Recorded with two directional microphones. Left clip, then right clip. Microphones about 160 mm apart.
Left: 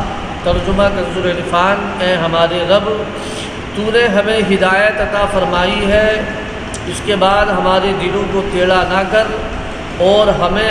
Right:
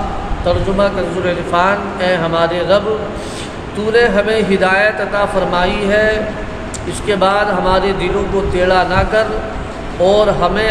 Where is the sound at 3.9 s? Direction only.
15° right (ahead or behind).